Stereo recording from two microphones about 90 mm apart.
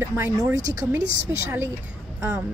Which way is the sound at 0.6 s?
40° right (ahead or behind).